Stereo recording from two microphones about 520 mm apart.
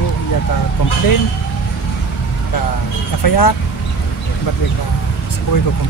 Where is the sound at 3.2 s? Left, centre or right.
Left.